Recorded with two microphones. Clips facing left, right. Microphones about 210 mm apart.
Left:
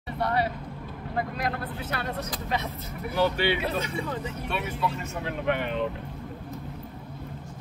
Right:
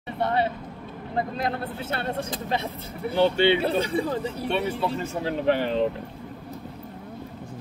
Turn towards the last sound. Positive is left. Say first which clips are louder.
# right 5 dB
turn(degrees=-35)  # may be behind; listen again after turning